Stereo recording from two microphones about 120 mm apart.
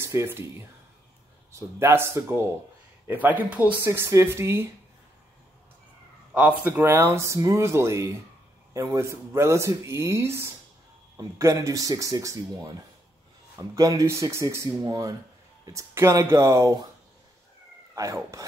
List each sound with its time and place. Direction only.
0.0 s speech: 20° right (ahead or behind)
6.3 s speech: 10° right (ahead or behind)
17.9 s speech: 25° right (ahead or behind)